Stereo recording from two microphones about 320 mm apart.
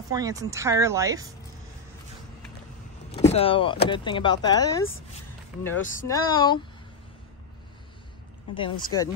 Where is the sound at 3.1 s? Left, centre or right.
Centre.